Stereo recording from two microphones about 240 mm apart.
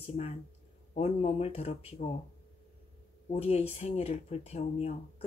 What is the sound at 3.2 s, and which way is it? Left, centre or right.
Speech, left.